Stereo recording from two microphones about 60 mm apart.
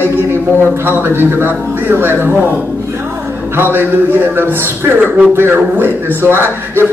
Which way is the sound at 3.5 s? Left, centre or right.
Right.